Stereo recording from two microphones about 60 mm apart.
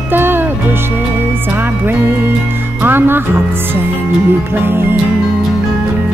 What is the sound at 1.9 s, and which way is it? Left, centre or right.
Music, right.